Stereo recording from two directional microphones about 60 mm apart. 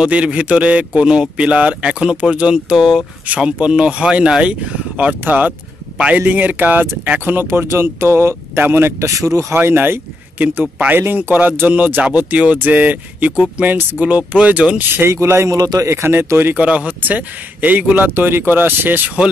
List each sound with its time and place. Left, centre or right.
0.0 s speech: centre
7.4 s speech: right
9.0 s speech: right
9.6 s speech: right
11.2 s speech: right
15.0 s speech: right
15.5 s a man's voice: right
15.9 s speech: right
16.5 s speech: right